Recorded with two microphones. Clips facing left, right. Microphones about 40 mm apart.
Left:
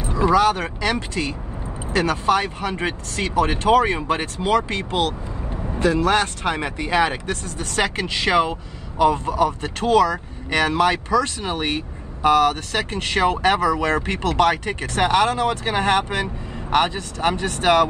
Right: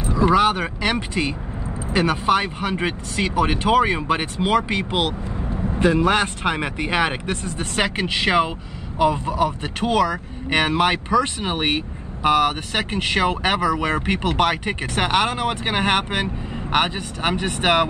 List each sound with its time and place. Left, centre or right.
0.3 s speech: right